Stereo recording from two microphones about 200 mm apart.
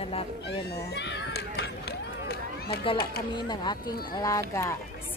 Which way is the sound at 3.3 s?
20° left (ahead or behind).